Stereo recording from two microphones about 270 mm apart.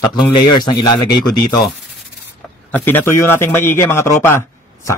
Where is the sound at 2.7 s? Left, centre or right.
Centre.